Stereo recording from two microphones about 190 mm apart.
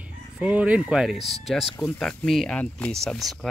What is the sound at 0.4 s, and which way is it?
Speech, 5° right (ahead or behind).